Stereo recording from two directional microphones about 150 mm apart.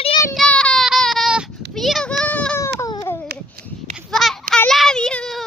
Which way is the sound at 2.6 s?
20° left (ahead or behind).